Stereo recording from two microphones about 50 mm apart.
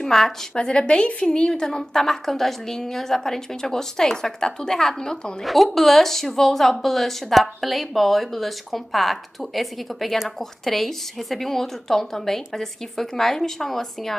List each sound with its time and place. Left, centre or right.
0.0 s a woman's voice: centre
0.6 s a woman's voice: centre
5.4 s speech: centre